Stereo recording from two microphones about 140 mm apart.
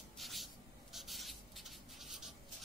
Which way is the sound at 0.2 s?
Centre (ahead or behind).